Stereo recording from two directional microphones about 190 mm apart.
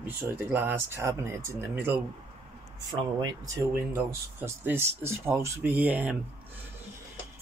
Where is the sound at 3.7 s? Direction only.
10° right (ahead or behind).